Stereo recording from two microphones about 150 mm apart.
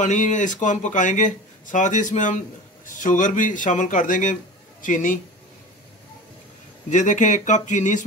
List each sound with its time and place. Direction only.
0.0 s speech: 55° left (ahead or behind)
6.9 s speech: 55° left (ahead or behind)